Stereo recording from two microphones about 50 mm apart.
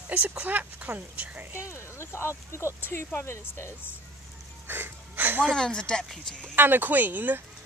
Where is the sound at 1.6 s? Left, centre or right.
Left.